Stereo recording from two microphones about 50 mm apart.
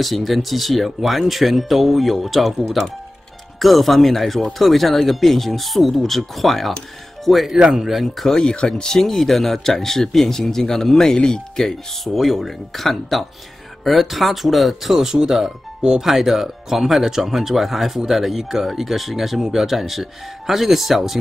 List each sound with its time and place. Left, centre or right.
0.0 s speech: centre
7.5 s speech: centre
7.9 s speech: centre
8.3 s speech: centre